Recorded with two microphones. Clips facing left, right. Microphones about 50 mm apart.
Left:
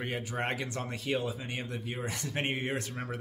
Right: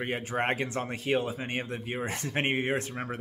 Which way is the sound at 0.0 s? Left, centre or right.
Right.